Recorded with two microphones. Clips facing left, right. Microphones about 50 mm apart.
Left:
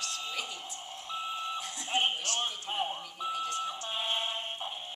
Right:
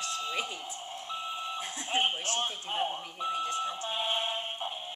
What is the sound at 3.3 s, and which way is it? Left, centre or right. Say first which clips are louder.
Alarm clock: right 2 dB; right.